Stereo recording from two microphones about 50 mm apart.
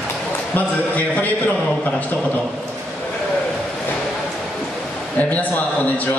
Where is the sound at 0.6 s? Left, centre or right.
Left.